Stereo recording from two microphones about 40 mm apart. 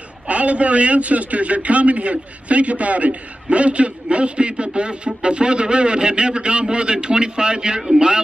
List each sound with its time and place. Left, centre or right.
0.3 s a man's voice: right; by 8.2 s centre